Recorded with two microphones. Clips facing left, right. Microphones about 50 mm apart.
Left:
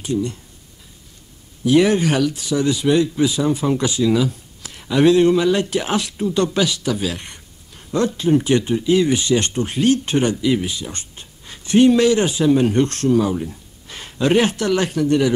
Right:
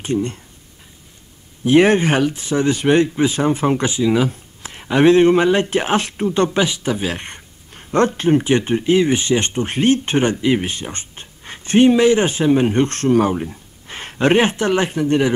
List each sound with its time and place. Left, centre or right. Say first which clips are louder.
0.0 s speech: right 1 dB; right
1.6 s speech: right 2 dB; right
11.9 s speech: right 1 dB; right